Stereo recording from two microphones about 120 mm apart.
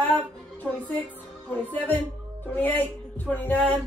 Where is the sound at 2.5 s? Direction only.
15° left (ahead or behind).